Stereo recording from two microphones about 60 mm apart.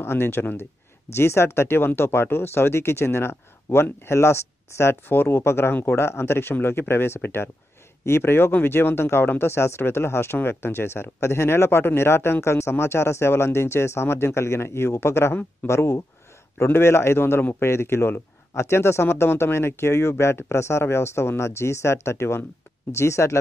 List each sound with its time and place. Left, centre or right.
0.0 s speech: left